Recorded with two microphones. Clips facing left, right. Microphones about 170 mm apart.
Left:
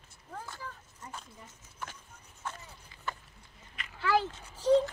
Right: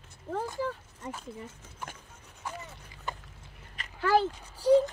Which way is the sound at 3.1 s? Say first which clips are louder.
Right 1 dB; 15° right (ahead or behind).